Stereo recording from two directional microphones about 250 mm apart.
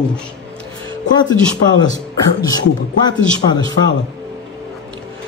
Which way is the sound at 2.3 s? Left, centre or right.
Centre.